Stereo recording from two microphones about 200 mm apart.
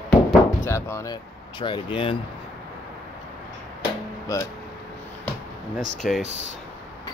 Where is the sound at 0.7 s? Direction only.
15° left (ahead or behind).